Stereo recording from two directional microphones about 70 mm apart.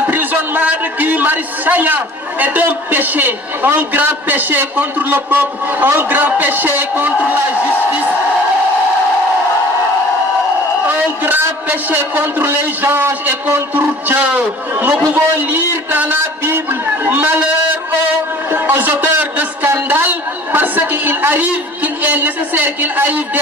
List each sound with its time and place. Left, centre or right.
0.0 s a man's voice: right
11.2 s a woman's voice: right
18.5 s music: right
19.7 s a woman's voice: right